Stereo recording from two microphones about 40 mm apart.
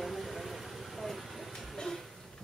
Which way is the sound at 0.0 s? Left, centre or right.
Centre.